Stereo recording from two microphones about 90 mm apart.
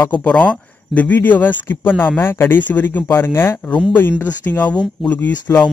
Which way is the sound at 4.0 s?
20° left (ahead or behind).